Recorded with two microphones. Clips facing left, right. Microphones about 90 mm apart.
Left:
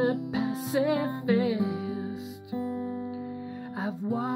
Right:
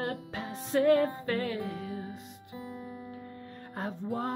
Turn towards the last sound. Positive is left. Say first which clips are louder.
# left 4 dB
turn(degrees=5)  # may be behind; listen again after turning